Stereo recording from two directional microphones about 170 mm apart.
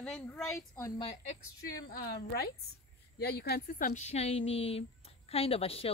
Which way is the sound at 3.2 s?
70° left (ahead or behind).